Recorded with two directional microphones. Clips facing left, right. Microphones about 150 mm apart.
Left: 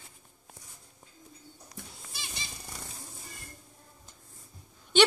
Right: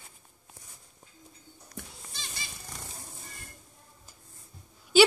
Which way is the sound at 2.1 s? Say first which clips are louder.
Left 1 dB; 10° left (ahead or behind).